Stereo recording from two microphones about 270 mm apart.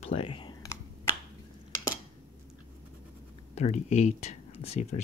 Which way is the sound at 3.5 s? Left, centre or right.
Left.